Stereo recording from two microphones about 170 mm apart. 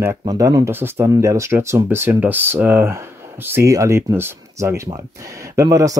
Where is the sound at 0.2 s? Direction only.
20° right (ahead or behind).